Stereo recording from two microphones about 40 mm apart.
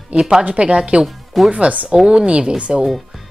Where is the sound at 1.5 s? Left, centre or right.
Right.